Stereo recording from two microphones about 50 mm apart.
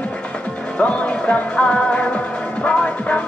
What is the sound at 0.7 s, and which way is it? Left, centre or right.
Music, left.